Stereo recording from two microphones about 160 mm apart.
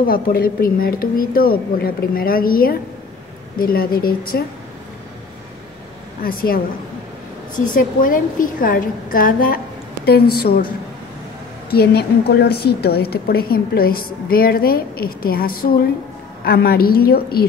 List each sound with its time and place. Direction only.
0.0 s a woman's voice: 65° left (ahead or behind)
6.2 s a woman's voice: 65° left (ahead or behind)
10.0 s a woman's voice: 75° left (ahead or behind)
11.7 s a woman's voice: 80° left